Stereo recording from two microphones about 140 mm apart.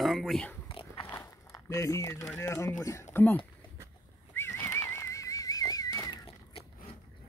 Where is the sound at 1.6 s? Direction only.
20° left (ahead or behind).